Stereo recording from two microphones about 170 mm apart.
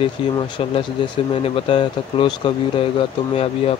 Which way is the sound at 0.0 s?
30° left (ahead or behind).